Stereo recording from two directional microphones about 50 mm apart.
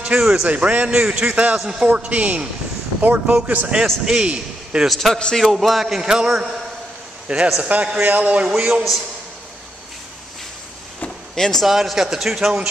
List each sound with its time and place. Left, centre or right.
0.2 s a man's voice: centre
0.5 s a man's voice: right
4.0 s a man's voice: centre
4.8 s a man's voice: centre; by 8.5 s right
8.5 s a man's voice: centre
11.3 s speech: centre
11.6 s a man's voice: centre